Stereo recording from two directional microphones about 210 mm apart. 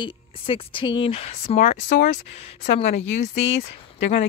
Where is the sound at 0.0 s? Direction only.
25° left (ahead or behind).